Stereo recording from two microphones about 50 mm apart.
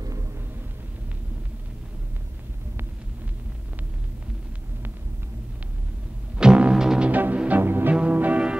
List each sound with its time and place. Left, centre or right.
6.3 s music: centre
7.1 s music: right
7.6 s music: right
7.9 s music: right